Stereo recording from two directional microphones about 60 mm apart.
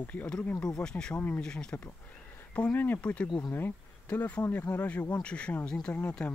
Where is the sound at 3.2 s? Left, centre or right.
Left.